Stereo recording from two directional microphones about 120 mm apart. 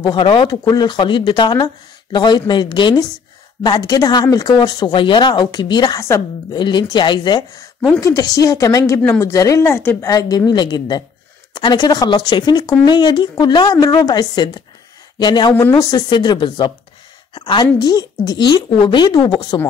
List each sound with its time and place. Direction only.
0.0 s a woman's voice: 45° left (ahead or behind)
5.9 s a woman's voice: 25° left (ahead or behind)
6.5 s a woman's voice: 40° left (ahead or behind)
7.9 s a woman's voice: 25° left (ahead or behind)